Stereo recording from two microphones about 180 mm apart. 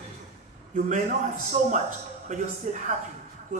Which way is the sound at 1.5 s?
45° right (ahead or behind).